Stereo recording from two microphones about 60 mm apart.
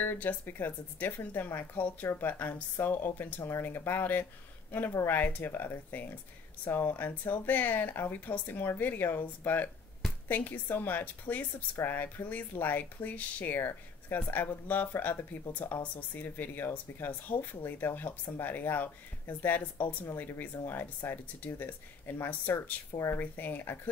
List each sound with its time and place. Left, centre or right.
0.0 s speech: left